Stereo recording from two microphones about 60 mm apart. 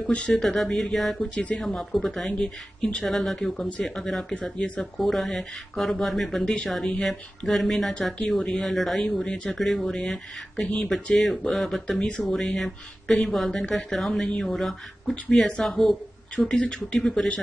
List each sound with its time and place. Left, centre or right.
0.1 s speech: centre
0.4 s speech: centre
4.4 s speech: left
4.9 s speech: centre
9.0 s speech: centre
16.3 s speech: centre